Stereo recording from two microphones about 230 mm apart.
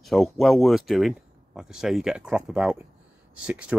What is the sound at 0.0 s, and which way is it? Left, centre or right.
Speech, centre.